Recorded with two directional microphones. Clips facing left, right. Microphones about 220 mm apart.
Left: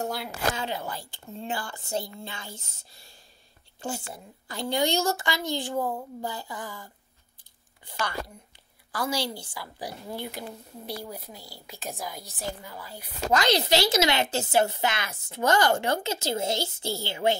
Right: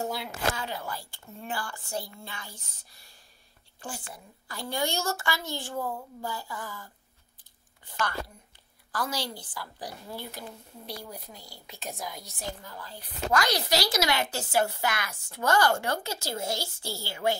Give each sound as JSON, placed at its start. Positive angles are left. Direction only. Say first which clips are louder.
{"t": 0.0, "sound": "speech", "louder": "left 1 dB", "side_deg": 0}
{"t": 0.6, "sound": "a woman's voice", "louder": "left 3 dB", "side_deg": 25}
{"t": 8.9, "sound": "a woman's voice", "louder": "left 3 dB", "side_deg": 10}
{"t": 13.3, "sound": "a woman's voice", "louder": "left 4 dB", "side_deg": 25}